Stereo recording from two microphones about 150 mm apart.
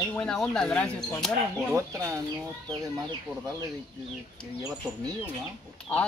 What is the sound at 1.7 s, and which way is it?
Speech, 20° right (ahead or behind).